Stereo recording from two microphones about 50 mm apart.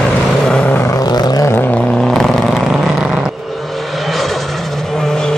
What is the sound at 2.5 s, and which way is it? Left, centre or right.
Vehicle, centre.